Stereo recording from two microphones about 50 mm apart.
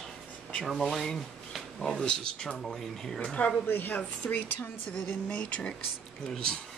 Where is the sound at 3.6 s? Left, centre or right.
Left.